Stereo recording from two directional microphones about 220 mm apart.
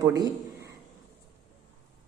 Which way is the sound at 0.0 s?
15° right (ahead or behind).